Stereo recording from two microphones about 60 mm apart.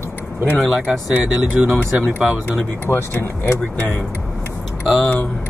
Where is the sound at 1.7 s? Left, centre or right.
Right.